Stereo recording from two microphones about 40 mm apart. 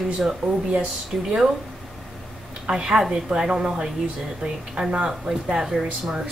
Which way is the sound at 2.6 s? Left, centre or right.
Centre.